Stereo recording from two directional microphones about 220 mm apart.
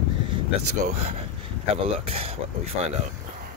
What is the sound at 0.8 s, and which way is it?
Speech, 30° right (ahead or behind).